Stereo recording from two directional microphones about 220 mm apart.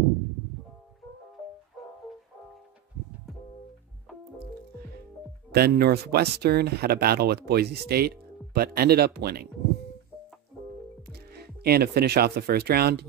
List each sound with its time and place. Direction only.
5.5 s speech: 45° right (ahead or behind)
11.1 s speech: 45° right (ahead or behind)